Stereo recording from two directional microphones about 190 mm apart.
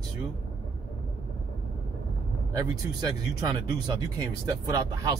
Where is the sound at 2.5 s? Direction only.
20° right (ahead or behind).